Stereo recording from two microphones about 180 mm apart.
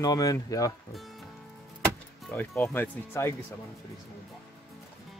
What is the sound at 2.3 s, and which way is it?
A man's voice, 10° left (ahead or behind).